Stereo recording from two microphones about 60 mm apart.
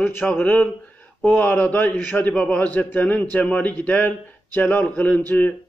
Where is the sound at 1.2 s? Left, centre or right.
Left.